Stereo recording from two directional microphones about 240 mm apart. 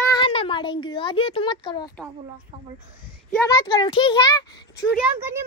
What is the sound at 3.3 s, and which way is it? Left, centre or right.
Speech, centre.